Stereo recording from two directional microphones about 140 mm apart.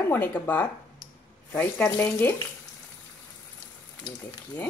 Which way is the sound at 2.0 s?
15° left (ahead or behind).